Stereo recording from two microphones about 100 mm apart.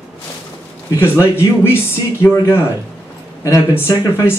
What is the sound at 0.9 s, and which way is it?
Speech, 25° left (ahead or behind).